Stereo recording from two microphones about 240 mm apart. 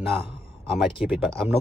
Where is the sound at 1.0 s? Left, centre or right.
Centre.